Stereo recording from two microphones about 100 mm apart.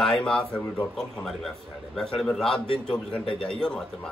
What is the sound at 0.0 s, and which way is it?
A man's voice, 5° left (ahead or behind).